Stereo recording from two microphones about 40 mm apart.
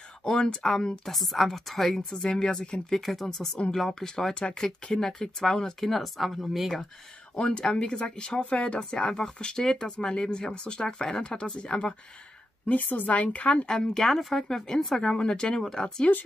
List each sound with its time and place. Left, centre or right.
0.2 s a woman's voice: centre
3.0 s a woman's voice: centre
4.1 s speech: left
5.0 s a woman's voice: centre
5.9 s speech: centre
7.3 s speech: left
12.6 s a woman's voice: left
13.7 s a woman's voice: centre
15.0 s speech: centre